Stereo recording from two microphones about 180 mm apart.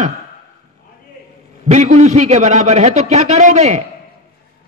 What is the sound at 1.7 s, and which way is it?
A man's voice, 40° right (ahead or behind).